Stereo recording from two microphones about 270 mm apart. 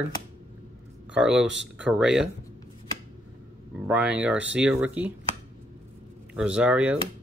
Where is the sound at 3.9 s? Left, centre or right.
Centre.